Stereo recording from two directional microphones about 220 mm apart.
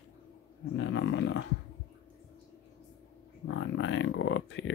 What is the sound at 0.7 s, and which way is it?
Speech, 55° left (ahead or behind).